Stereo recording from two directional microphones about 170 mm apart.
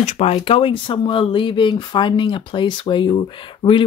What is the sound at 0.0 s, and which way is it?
Speech, 35° left (ahead or behind).